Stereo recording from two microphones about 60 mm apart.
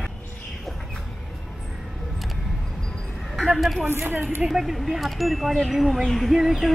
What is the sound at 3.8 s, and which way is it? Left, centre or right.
Speech, right.